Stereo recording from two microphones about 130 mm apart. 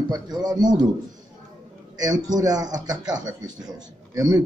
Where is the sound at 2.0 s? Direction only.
30° right (ahead or behind).